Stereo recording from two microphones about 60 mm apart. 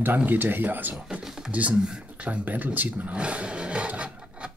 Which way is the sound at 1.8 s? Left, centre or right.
Centre.